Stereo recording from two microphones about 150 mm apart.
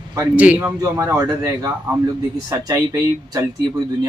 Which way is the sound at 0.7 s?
20° right (ahead or behind).